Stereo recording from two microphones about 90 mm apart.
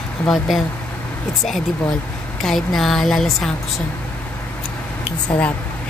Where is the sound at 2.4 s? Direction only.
Centre (ahead or behind).